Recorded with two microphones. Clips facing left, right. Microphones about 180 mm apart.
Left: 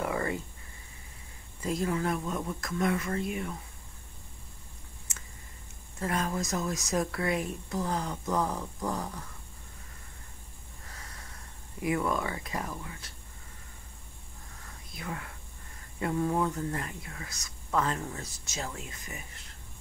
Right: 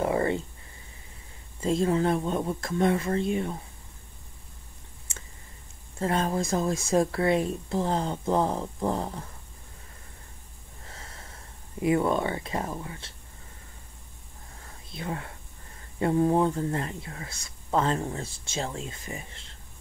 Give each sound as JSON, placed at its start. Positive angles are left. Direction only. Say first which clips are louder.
{"t": 0.0, "sound": "a sound", "louder": "right 6 dB", "side_deg": -30}
{"t": 1.6, "sound": "speech", "louder": "right 6 dB", "side_deg": -25}
{"t": 5.9, "sound": "speech", "louder": "right 5 dB", "side_deg": -30}
{"t": 10.9, "sound": "snort", "louder": "right 3 dB", "side_deg": -25}
{"t": 11.8, "sound": "speech", "louder": "right 6 dB", "side_deg": -30}
{"t": 14.9, "sound": "speech", "louder": "right 5 dB", "side_deg": -30}